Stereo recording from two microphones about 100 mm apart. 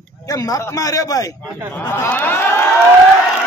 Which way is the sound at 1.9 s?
20° left (ahead or behind).